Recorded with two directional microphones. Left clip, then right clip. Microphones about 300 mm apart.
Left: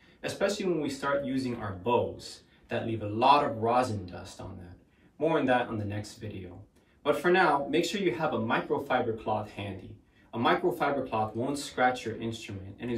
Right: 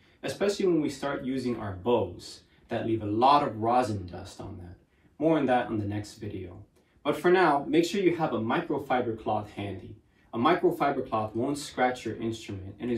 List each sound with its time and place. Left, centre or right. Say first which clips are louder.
0.2 s speech: right 2 dB; centre
5.3 s speech: right 2 dB; centre
7.1 s speech: right 1 dB; centre
10.3 s speech: right 2 dB; centre